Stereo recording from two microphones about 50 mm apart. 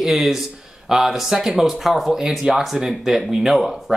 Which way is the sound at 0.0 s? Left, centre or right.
Centre.